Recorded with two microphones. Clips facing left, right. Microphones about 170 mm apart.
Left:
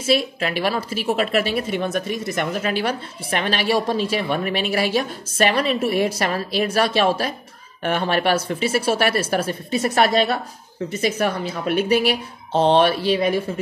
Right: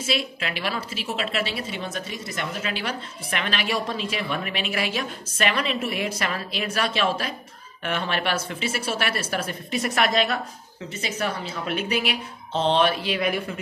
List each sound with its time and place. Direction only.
0.0 s a woman's voice: 40° left (ahead or behind)
3.3 s a woman's voice: 35° left (ahead or behind)
11.0 s a woman's voice: 45° left (ahead or behind)
12.8 s a woman's voice: 30° left (ahead or behind)